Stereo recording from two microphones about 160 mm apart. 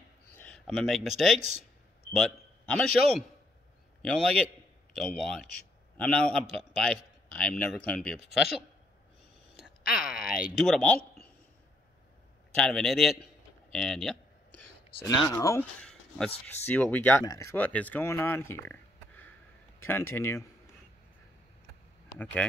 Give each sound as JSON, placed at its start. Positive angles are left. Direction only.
{"t": 0.4, "sound": "a man's voice", "side_deg": 5}
{"t": 10.0, "sound": "speech", "side_deg": -5}
{"t": 12.5, "sound": "a sound", "side_deg": 5}
{"t": 15.0, "sound": "speech", "side_deg": 20}
{"t": 15.8, "sound": "a sound", "side_deg": 5}
{"t": 16.4, "sound": "speech", "side_deg": 10}
{"t": 22.2, "sound": "speech", "side_deg": 10}